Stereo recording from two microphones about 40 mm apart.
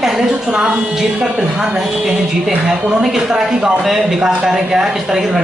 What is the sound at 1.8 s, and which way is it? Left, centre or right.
A woman's voice, centre.